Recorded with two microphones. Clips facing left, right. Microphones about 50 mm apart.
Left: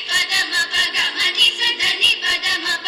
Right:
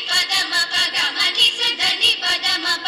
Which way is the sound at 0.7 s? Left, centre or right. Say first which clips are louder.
Left 1 dB; left.